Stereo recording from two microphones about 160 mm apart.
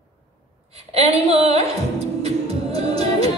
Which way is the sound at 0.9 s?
40° right (ahead or behind).